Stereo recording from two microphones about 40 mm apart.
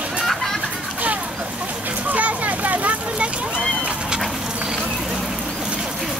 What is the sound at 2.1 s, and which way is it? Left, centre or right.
Vehicle, right.